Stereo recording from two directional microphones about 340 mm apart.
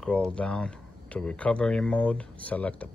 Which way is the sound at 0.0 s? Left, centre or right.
Centre.